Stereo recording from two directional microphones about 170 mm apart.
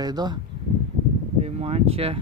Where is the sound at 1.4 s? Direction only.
35° right (ahead or behind).